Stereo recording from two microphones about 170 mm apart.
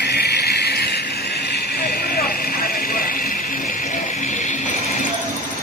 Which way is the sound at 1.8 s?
60° left (ahead or behind).